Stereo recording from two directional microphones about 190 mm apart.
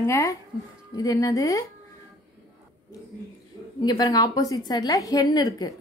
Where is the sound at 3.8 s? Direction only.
20° left (ahead or behind).